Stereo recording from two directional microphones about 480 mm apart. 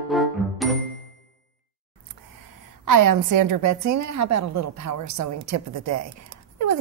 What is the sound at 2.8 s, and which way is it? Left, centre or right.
A woman's voice, right.